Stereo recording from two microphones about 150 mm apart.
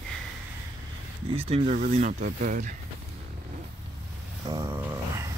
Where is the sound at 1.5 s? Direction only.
45° right (ahead or behind).